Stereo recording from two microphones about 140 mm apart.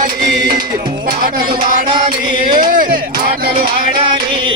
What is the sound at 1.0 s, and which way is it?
Music, 90° right.